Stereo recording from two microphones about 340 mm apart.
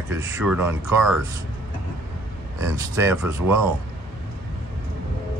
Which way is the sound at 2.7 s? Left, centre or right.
Centre.